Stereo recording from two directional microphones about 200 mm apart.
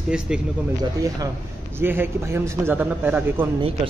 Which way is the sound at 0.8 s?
20° right (ahead or behind).